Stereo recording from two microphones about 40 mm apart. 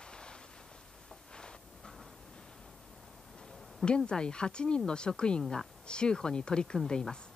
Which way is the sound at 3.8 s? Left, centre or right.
Left.